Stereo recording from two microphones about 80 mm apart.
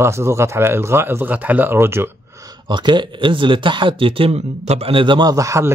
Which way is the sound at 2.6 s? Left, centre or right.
Right.